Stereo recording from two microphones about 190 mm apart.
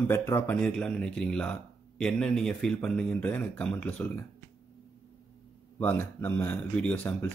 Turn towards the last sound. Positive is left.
turn(degrees=5)  # may be behind; listen again after turning